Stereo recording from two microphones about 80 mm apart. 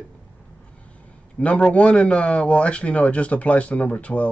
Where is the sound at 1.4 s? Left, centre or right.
Centre.